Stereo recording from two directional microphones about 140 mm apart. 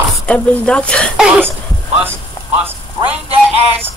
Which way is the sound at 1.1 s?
5° right (ahead or behind).